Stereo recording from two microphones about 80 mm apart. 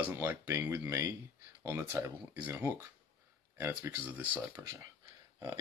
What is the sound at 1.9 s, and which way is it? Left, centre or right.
Speech, right.